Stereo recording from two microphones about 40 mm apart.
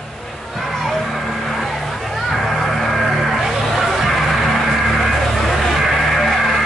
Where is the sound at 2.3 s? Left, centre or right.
Centre.